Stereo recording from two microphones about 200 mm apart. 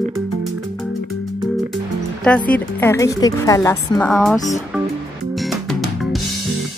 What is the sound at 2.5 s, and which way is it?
Speech, 10° left (ahead or behind).